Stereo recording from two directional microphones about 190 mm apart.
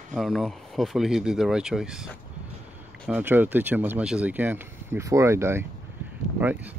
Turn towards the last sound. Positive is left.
turn(degrees=-10)  # may be behind; listen again after turning